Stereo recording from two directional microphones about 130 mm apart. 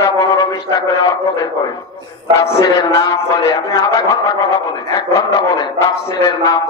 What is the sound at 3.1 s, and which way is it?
A man's voice, 25° left (ahead or behind).